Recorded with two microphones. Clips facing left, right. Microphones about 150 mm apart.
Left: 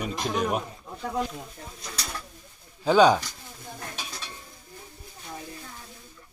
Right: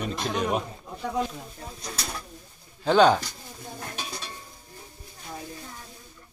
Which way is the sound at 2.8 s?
10° left (ahead or behind).